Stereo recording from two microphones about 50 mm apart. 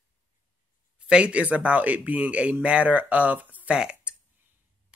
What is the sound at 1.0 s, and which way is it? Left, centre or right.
Speech, centre.